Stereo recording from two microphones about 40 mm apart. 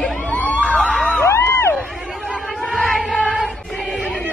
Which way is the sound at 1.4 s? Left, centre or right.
Left.